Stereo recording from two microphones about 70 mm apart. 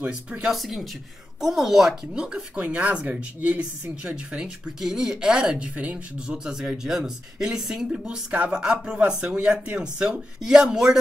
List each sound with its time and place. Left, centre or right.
0.1 s speech: centre
2.5 s speech: right
4.7 s speech: centre